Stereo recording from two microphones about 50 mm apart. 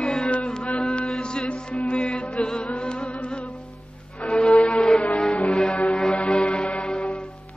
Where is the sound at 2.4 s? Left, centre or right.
Left.